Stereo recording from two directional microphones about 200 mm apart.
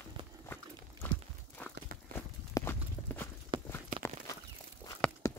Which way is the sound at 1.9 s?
45° right (ahead or behind).